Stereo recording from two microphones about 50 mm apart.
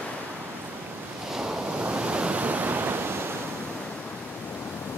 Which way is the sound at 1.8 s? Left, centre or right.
Right.